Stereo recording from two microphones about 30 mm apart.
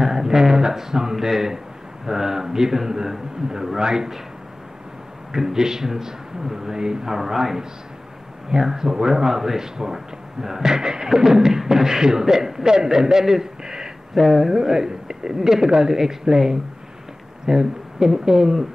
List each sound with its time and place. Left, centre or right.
0.0 s a man's voice: centre
1.1 s beatboxing: centre
3.8 s a man's voice: right
5.3 s beatboxing: centre
8.5 s a man's voice: centre
9.9 s beatboxing: centre
12.7 s a man's voice: centre
14.2 s beatboxing: centre
17.5 s speech: centre
18.1 s beatboxing: centre